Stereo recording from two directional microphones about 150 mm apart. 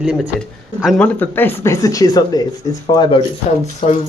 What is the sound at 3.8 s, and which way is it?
Speech, 40° left (ahead or behind).